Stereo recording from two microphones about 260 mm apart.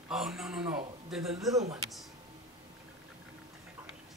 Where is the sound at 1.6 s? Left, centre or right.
Centre.